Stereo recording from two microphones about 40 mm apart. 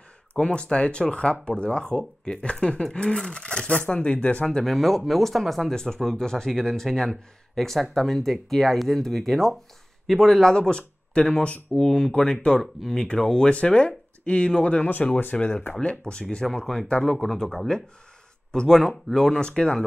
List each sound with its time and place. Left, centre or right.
0.4 s speech: left
4.6 s speech: centre
10.7 s speech: left
11.7 s speech: centre
13.5 s speech: left
17.0 s speech: centre
19.4 s speech: left